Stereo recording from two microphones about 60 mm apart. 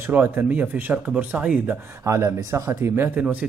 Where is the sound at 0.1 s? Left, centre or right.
Right.